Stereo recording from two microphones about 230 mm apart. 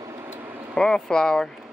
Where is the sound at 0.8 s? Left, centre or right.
Centre.